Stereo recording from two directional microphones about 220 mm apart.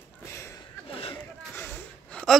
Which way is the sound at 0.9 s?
25° left (ahead or behind).